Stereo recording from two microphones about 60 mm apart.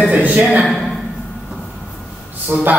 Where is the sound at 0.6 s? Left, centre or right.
Centre.